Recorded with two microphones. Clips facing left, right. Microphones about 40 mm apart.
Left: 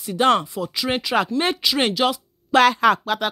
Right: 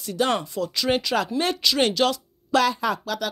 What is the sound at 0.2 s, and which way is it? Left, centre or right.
Speech, left.